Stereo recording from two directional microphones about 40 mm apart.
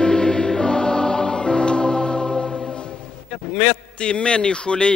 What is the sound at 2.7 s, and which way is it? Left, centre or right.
Choir, left.